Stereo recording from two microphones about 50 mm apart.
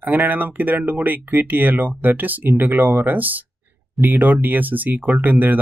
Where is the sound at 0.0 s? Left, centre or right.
Right.